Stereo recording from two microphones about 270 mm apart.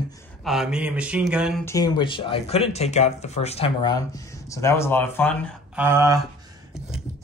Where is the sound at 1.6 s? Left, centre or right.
Centre.